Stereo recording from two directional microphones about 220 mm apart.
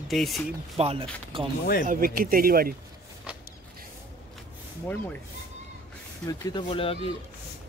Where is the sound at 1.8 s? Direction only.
40° right (ahead or behind).